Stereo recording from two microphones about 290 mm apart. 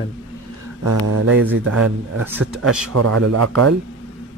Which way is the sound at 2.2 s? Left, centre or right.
Centre.